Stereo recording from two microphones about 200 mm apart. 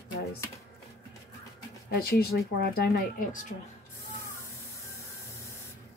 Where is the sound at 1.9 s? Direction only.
50° left (ahead or behind).